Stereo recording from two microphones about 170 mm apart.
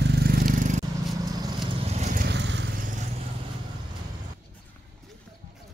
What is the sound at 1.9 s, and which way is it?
Vehicle, 40° right (ahead or behind).